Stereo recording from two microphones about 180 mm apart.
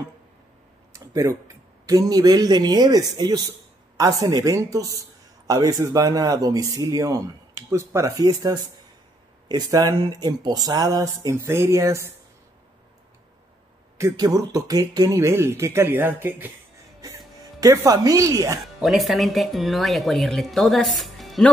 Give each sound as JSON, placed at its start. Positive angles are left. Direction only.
{"t": 0.9, "sound": "tick-tock", "side_deg": -20}
{"t": 1.9, "sound": "speech", "side_deg": -20}
{"t": 13.9, "sound": "speech", "side_deg": -20}
{"t": 17.0, "sound": "a sound", "side_deg": -20}
{"t": 17.4, "sound": "speech", "side_deg": -20}
{"t": 18.8, "sound": "speech", "side_deg": 0}